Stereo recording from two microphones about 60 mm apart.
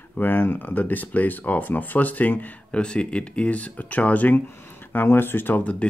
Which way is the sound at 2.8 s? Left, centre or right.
Centre.